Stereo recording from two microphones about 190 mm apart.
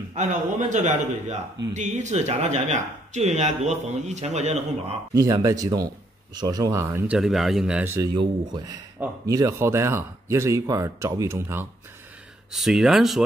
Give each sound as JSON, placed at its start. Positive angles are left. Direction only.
{"t": 0.1, "sound": "speech", "side_deg": -40}
{"t": 5.1, "sound": "speech", "side_deg": -20}
{"t": 7.2, "sound": "speech", "side_deg": 0}
{"t": 8.1, "sound": "speech", "side_deg": -25}
{"t": 12.5, "sound": "speech", "side_deg": 0}